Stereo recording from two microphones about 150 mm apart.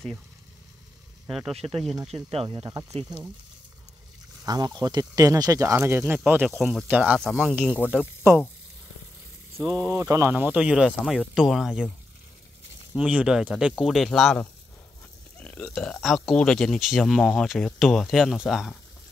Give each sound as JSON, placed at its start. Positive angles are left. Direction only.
{"t": 1.5, "sound": "speech", "side_deg": -40}
{"t": 4.5, "sound": "speech", "side_deg": -25}
{"t": 7.2, "sound": "speech", "side_deg": 0}
{"t": 9.6, "sound": "speech", "side_deg": -25}
{"t": 12.9, "sound": "speech", "side_deg": -5}